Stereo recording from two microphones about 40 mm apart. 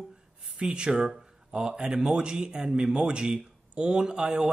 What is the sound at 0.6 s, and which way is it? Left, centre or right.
Speech, right.